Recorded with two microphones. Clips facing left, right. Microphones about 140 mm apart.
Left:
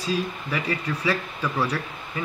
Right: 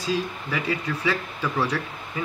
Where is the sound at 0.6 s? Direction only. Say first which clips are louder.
Even; centre (ahead or behind).